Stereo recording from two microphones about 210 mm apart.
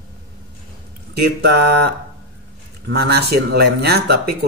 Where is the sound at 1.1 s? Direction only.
50° right (ahead or behind).